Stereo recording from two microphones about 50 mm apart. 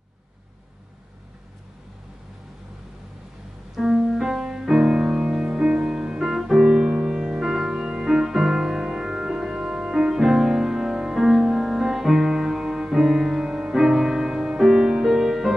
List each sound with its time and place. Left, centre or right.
3.7 s music: centre